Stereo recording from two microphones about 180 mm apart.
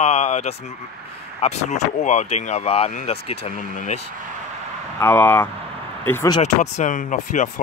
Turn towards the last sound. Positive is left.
turn(degrees=45)  # may be behind; listen again after turning